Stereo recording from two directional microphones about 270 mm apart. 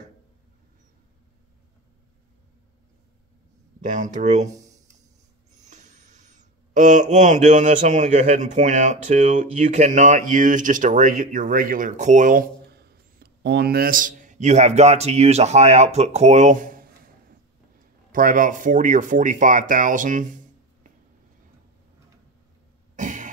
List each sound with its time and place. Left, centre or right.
3.8 s speech: right
5.6 s speech: right
22.9 s a sound: right